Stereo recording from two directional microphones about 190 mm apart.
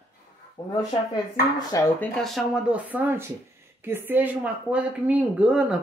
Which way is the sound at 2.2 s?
5° right (ahead or behind).